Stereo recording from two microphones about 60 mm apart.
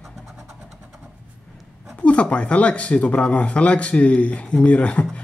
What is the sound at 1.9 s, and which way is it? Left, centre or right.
Speech, left.